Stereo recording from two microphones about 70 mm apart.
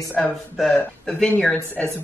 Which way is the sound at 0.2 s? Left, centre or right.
Centre.